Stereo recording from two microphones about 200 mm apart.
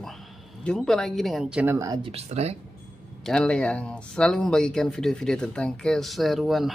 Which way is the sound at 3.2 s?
5° left (ahead or behind).